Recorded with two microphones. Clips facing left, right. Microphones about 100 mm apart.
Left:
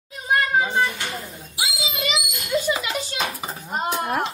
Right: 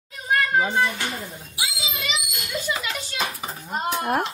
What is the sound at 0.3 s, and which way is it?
Children playing, 10° left (ahead or behind).